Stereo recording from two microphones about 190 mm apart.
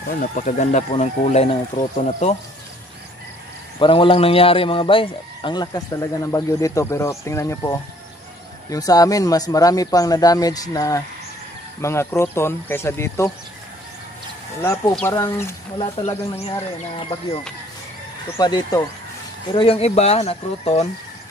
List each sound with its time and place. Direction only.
0.1 s speech: 45° left (ahead or behind)
3.8 s speech: 30° left (ahead or behind)
14.6 s speech: 15° left (ahead or behind)
15.8 s speech: 30° left (ahead or behind)
18.4 s speech: 20° left (ahead or behind)
19.5 s speech: 30° left (ahead or behind)